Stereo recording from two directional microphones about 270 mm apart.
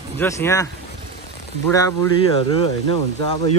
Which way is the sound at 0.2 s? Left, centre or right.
Centre.